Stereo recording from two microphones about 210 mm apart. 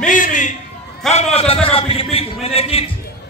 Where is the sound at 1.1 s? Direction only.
30° left (ahead or behind).